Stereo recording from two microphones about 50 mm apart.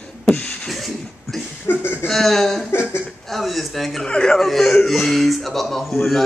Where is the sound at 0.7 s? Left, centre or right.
Centre.